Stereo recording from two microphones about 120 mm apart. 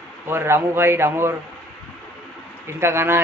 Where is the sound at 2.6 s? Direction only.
20° right (ahead or behind).